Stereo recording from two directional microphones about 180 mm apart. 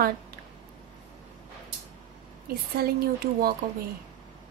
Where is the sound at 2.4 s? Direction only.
60° right (ahead or behind).